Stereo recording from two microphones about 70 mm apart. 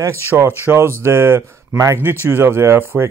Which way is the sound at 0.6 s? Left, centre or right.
Right.